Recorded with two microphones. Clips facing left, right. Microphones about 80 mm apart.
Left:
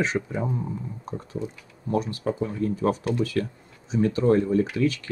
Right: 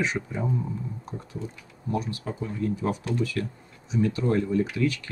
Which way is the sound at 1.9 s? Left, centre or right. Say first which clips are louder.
Left 5 dB; left.